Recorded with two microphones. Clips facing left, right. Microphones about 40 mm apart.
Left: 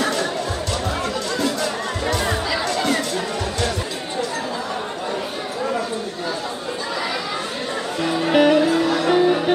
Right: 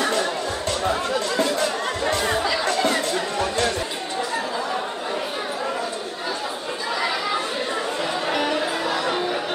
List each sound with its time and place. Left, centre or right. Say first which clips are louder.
0.0 s music: left 1 dB; centre
0.8 s chatter: right 4 dB; centre
2.1 s chatter: even; centre
2.7 s music: left 1 dB; centre
8.3 s music: left 10 dB; left
8.7 s music: left 6 dB; centre